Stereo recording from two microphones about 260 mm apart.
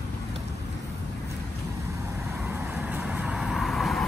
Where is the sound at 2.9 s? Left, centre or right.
Centre.